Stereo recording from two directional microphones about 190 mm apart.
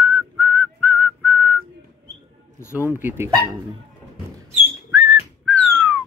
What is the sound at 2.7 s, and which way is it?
Speech, 10° right (ahead or behind).